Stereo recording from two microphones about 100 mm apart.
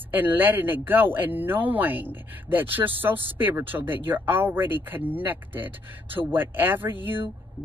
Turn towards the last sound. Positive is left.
turn(degrees=-20)  # may be behind; listen again after turning